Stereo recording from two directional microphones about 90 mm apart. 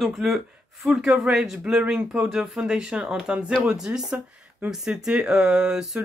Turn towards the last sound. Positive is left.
turn(degrees=-5)  # may be behind; listen again after turning